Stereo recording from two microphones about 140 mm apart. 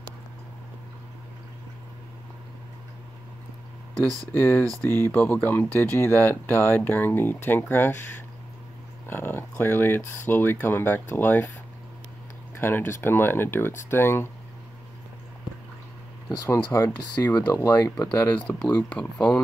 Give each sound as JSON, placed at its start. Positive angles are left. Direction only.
{"t": 4.3, "sound": "speech", "side_deg": 15}
{"t": 12.5, "sound": "speech", "side_deg": 15}
{"t": 16.7, "sound": "speech", "side_deg": 20}